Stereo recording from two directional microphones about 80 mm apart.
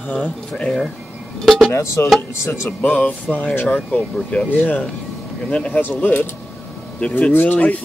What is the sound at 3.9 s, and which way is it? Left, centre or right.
Speech, centre.